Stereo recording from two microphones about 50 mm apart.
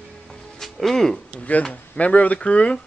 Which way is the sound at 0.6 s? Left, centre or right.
Centre.